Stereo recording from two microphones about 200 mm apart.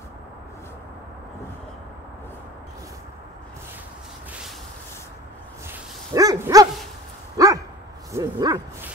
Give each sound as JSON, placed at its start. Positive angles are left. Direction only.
{"t": 5.7, "sound": "dog", "side_deg": -15}
{"t": 8.1, "sound": "speech", "side_deg": -20}